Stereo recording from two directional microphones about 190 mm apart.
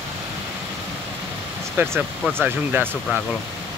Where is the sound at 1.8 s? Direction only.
10° right (ahead or behind).